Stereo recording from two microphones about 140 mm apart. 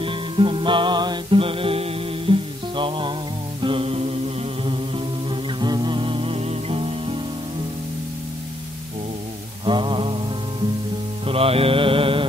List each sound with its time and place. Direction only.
0.0 s music: 40° right (ahead or behind)
3.6 s mantra: 40° right (ahead or behind)
4.6 s music: 35° right (ahead or behind)
9.7 s mantra: 35° right (ahead or behind)
11.2 s mantra: 45° right (ahead or behind)